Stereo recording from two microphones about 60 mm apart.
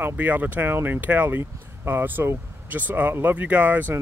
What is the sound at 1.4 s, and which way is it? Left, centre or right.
Speech, right.